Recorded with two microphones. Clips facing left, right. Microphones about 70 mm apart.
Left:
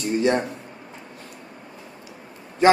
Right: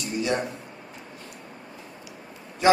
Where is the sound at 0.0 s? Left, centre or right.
Left.